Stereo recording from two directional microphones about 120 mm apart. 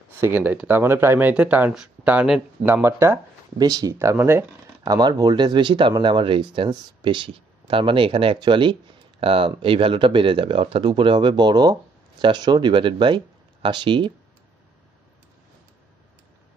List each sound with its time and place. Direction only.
0.2 s speech: 15° right (ahead or behind)
2.6 s speech: 20° right (ahead or behind)
3.5 s speech: 35° right (ahead or behind)
4.8 s speech: 35° right (ahead or behind)